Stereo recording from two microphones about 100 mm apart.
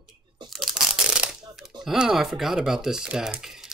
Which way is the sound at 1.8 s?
5° right (ahead or behind).